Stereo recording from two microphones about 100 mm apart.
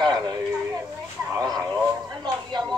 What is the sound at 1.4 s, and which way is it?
A woman's voice, 40° right (ahead or behind).